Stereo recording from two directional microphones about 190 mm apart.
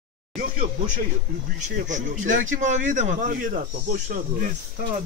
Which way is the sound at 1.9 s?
40° right (ahead or behind).